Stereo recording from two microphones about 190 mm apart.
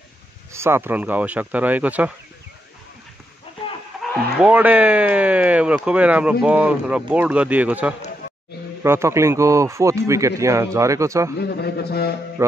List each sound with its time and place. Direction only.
0.5 s a man's voice: 15° right (ahead or behind)
4.0 s a man's voice: centre (ahead or behind)
11.3 s a man's voice: 60° left (ahead or behind)
12.4 s a man's voice: 15° right (ahead or behind)